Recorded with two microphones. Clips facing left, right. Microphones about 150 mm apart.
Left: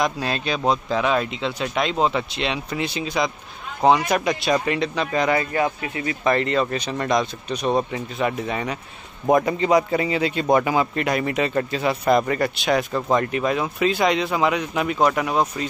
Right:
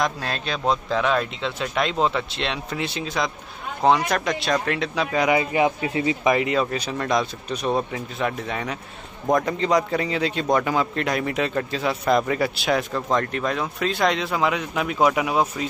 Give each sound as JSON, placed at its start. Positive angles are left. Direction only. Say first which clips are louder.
{"t": 0.0, "sound": "a man's voice", "louder": "left 2 dB", "side_deg": 0}
{"t": 6.3, "sound": "a man's voice", "louder": "left 1 dB", "side_deg": -5}